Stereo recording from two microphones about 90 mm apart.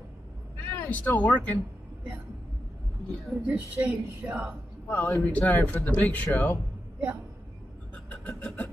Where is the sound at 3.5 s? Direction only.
10° right (ahead or behind).